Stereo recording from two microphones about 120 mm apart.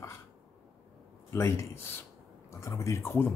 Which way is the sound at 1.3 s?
25° left (ahead or behind).